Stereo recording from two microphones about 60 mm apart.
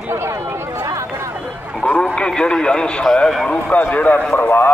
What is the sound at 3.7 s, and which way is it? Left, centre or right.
Speech, left.